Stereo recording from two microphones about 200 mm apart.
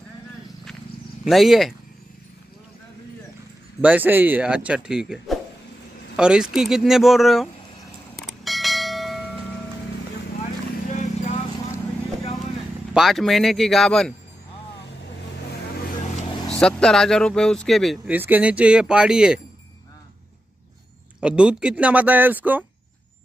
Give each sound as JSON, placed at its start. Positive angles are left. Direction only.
{"t": 1.2, "sound": "speech", "side_deg": 0}
{"t": 3.8, "sound": "speech", "side_deg": -10}
{"t": 8.2, "sound": "bell", "side_deg": 0}
{"t": 10.9, "sound": "vehicle", "side_deg": 35}
{"t": 12.9, "sound": "speech", "side_deg": 0}
{"t": 16.4, "sound": "speech", "side_deg": 5}
{"t": 21.2, "sound": "speech", "side_deg": -5}